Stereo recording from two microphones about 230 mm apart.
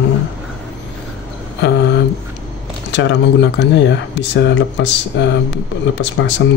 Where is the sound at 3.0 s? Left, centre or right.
Left.